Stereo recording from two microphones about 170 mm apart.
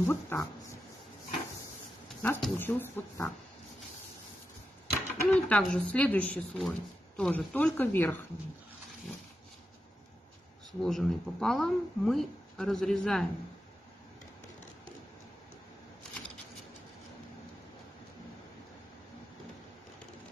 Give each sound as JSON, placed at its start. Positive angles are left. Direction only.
{"t": 0.0, "sound": "speech", "side_deg": 15}
{"t": 2.2, "sound": "speech", "side_deg": 10}
{"t": 4.9, "sound": "speech", "side_deg": 5}
{"t": 10.8, "sound": "speech", "side_deg": 0}